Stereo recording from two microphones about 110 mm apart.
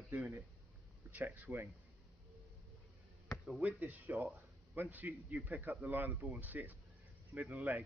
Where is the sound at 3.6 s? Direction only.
15° right (ahead or behind).